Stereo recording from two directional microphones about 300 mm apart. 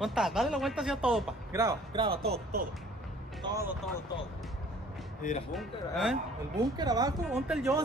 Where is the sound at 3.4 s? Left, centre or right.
Centre.